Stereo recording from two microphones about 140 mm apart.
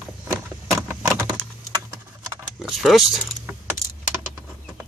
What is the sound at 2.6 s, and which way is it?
Keys jangling, centre (ahead or behind).